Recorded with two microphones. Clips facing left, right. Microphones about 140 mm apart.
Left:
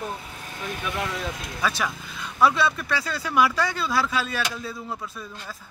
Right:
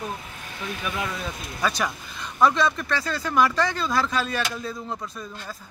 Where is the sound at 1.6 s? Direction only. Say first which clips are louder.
Right 1 dB; centre (ahead or behind).